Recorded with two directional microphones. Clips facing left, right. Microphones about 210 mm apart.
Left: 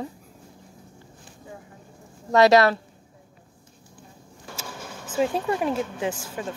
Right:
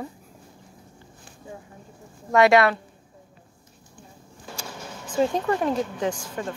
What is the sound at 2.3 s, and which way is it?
Speech, 35° left (ahead or behind).